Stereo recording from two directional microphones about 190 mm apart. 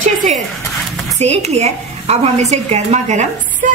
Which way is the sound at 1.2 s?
35° right (ahead or behind).